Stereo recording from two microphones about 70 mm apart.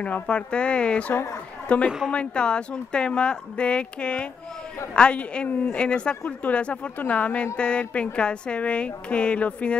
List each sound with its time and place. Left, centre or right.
0.0 s a woman's voice: centre